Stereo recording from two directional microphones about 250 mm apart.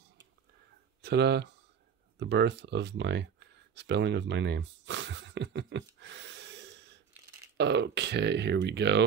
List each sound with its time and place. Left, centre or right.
1.0 s speech: right
2.1 s a sound: right
7.5 s speech: right